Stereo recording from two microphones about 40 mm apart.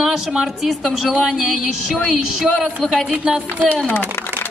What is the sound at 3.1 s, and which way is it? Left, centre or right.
Speech, right.